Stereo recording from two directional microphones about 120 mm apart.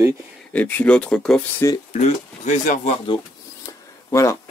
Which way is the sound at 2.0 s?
75° left (ahead or behind).